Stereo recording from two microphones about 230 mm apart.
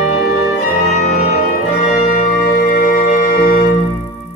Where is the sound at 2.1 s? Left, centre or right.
Left.